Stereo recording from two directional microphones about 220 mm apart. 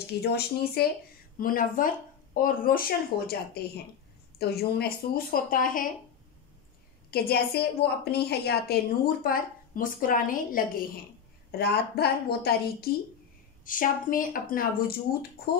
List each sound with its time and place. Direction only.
0.0 s a woman's voice: 45° left (ahead or behind)
7.1 s a woman's voice: 45° left (ahead or behind)